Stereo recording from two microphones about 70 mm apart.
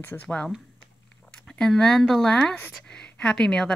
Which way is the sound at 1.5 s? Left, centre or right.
Centre.